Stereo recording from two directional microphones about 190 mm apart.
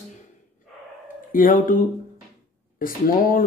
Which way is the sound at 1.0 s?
45° left (ahead or behind).